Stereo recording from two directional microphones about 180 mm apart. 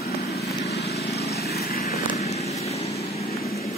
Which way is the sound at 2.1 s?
35° left (ahead or behind).